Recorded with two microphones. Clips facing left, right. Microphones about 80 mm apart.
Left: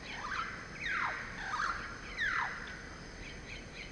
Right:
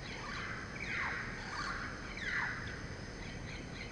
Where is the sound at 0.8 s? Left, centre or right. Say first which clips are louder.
Left 5 dB; left.